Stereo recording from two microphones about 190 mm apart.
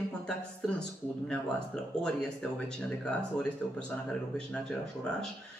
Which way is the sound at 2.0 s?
5° left (ahead or behind).